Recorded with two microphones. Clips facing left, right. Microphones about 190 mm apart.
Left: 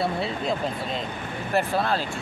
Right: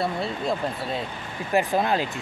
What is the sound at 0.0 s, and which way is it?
Speech, centre (ahead or behind).